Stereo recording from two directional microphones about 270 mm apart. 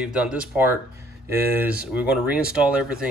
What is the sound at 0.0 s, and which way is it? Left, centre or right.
Speech, centre.